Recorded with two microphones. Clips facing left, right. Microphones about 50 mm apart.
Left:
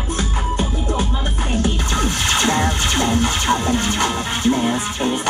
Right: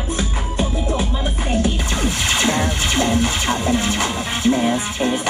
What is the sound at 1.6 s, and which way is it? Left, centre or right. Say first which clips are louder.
Music: left 1 dB; left.